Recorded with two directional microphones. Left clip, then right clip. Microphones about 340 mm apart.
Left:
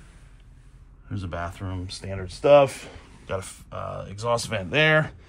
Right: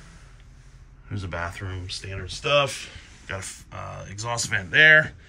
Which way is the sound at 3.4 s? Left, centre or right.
Centre.